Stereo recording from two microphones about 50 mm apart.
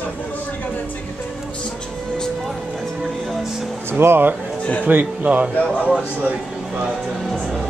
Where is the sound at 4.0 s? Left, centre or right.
Right.